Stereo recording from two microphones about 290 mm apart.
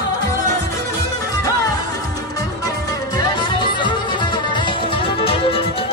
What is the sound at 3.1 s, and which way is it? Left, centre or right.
Music, centre.